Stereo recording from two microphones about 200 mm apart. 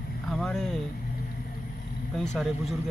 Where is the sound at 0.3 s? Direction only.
Centre (ahead or behind).